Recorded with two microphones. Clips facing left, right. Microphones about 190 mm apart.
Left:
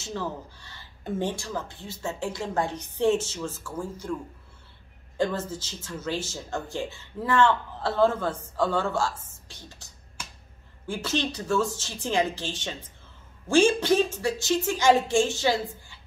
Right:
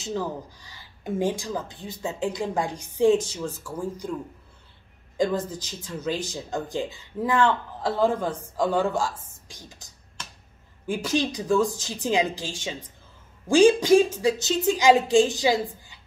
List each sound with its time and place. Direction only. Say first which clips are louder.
0.0 s speech: right 3 dB; 15° right (ahead or behind)
10.9 s speech: right 3 dB; 15° right (ahead or behind)